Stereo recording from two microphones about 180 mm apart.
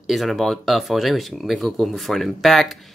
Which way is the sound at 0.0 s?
Centre (ahead or behind).